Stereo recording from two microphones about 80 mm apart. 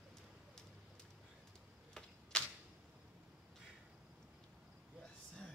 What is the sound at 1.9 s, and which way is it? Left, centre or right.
Typewriter, centre.